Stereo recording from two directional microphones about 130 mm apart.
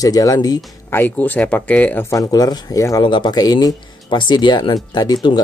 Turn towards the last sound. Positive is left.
turn(degrees=35)  # may be behind; listen again after turning